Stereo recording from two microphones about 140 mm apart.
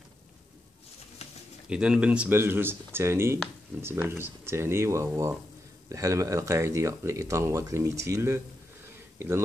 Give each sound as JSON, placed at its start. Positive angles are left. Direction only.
{"t": 1.7, "sound": "speech", "side_deg": -5}